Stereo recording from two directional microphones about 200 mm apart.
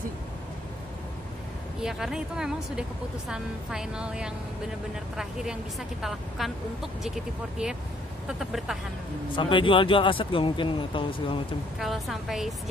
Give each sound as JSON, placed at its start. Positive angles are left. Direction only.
{"t": 1.8, "sound": "a woman's voice", "side_deg": 0}
{"t": 8.3, "sound": "a woman's voice", "side_deg": 0}
{"t": 9.3, "sound": "speech", "side_deg": 25}
{"t": 11.8, "sound": "a woman's voice", "side_deg": 0}